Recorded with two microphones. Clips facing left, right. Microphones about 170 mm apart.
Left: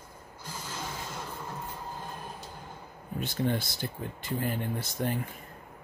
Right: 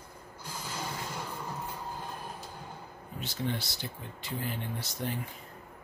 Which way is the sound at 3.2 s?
50° left (ahead or behind).